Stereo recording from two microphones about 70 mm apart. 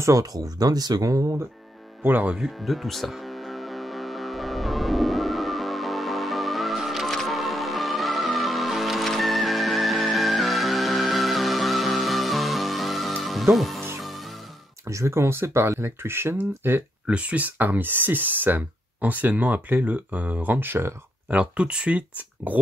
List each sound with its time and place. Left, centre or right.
0.0 s speech: right
2.0 s speech: right
2.3 s music: centre
14.9 s speech: right
17.0 s speech: centre
21.3 s speech: centre